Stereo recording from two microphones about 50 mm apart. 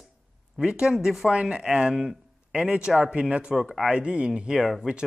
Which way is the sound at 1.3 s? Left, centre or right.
Right.